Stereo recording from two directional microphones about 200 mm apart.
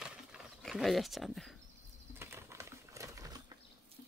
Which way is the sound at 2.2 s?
15° right (ahead or behind).